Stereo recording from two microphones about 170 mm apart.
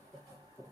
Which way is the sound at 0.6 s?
15° right (ahead or behind).